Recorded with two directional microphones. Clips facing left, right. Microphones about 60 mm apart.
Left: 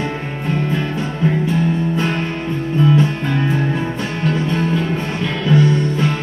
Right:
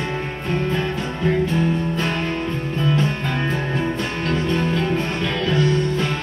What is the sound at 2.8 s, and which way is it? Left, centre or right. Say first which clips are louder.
Music: left 6 dB; centre.